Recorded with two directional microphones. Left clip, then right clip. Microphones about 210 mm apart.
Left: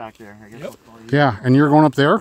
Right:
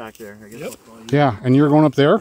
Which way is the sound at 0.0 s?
10° left (ahead or behind).